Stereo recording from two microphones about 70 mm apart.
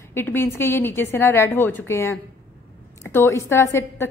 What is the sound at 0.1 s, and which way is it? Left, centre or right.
Speech, left.